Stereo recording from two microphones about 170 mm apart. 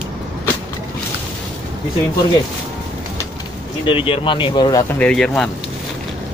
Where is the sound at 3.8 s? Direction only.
30° left (ahead or behind).